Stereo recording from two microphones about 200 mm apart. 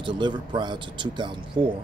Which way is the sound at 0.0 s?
25° right (ahead or behind).